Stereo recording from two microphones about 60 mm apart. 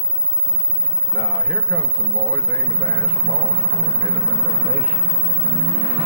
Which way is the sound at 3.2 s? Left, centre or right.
Left.